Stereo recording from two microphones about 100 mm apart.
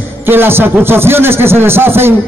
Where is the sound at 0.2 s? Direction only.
20° right (ahead or behind).